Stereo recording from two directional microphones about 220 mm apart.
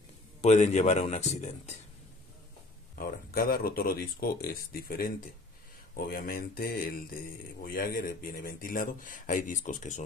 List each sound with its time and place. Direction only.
0.4 s speech: 30° left (ahead or behind)
3.0 s speech: 40° left (ahead or behind)